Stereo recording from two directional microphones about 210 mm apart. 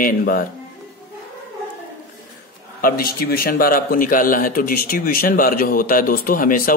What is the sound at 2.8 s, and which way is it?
Speech, 45° left (ahead or behind).